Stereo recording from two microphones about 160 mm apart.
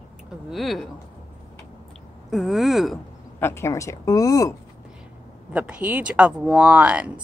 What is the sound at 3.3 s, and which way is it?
Speech, 15° left (ahead or behind).